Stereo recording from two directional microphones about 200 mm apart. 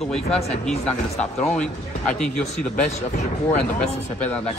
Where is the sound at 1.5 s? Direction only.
5° left (ahead or behind).